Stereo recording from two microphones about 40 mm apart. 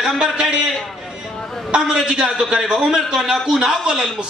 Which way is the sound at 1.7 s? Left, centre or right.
Centre.